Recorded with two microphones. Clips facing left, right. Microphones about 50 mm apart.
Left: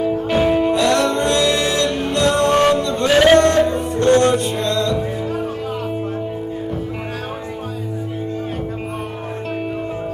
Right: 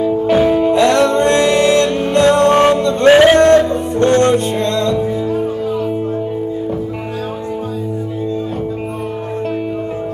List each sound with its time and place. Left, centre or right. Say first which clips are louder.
0.3 s music: right 4 dB; centre
0.7 s music: right 5 dB; right